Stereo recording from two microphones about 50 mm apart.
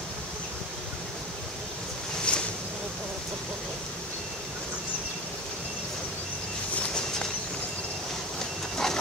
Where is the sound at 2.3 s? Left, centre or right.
Centre.